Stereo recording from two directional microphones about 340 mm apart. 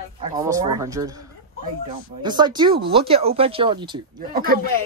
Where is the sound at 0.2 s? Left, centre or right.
Centre.